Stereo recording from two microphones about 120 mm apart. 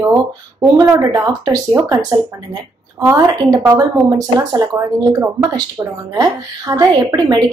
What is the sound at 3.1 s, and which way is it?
A woman's voice, 30° right (ahead or behind).